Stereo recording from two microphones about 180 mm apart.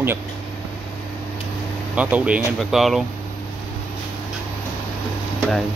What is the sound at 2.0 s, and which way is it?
Speech, 10° right (ahead or behind).